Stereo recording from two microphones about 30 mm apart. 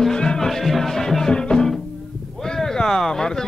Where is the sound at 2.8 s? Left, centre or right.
Left.